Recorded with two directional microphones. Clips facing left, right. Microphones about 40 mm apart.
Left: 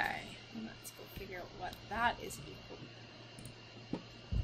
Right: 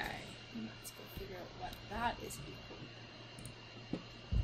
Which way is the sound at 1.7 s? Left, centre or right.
Left.